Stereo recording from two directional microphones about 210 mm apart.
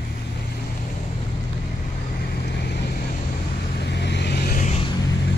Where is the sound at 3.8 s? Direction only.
55° left (ahead or behind).